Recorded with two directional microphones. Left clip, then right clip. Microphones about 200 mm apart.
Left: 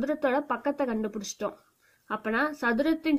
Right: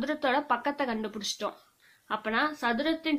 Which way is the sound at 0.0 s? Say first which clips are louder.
Left 1 dB; 40° left (ahead or behind).